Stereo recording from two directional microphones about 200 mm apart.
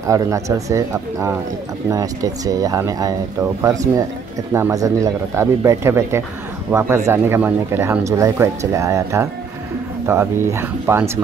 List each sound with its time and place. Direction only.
0.0 s speech: 15° right (ahead or behind)
4.6 s speech: 15° right (ahead or behind)